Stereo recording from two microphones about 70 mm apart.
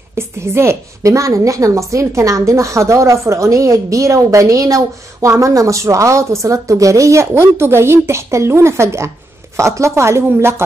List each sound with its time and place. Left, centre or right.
0.1 s a woman's voice: right